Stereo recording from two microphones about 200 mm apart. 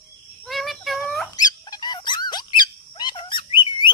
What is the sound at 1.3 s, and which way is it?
Squeak, 20° left (ahead or behind).